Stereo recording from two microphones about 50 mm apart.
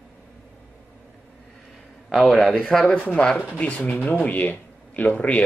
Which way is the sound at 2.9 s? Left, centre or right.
Left.